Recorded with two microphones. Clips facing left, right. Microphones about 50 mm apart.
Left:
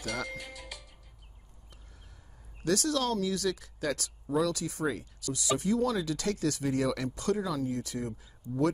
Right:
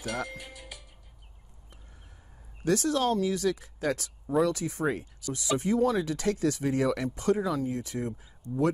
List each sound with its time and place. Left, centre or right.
0.0 s speech: centre
2.6 s speech: right